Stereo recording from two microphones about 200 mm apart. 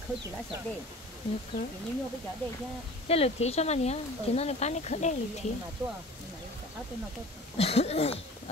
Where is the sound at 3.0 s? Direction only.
30° left (ahead or behind).